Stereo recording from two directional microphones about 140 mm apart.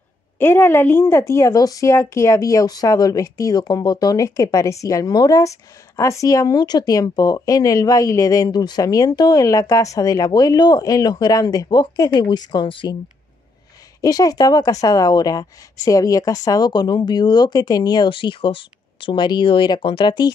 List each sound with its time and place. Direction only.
0.4 s a woman's voice: 15° left (ahead or behind); by 12.9 s 35° left (ahead or behind)
14.0 s a woman's voice: 25° left (ahead or behind)